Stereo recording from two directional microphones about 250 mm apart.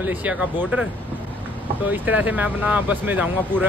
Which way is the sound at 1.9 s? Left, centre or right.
Centre.